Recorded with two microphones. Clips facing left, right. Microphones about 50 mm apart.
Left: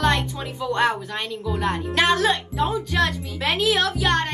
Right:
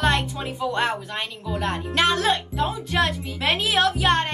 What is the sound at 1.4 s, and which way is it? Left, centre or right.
Music, centre.